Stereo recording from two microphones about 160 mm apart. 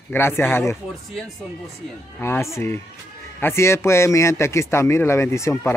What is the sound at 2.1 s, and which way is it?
A man's voice, 15° left (ahead or behind).